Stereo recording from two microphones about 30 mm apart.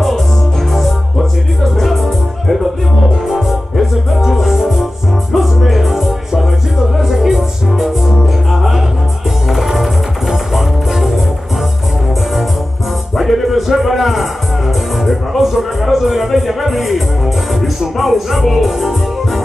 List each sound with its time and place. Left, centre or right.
1.8 s music: centre
13.2 s a sound: centre
15.0 s music: centre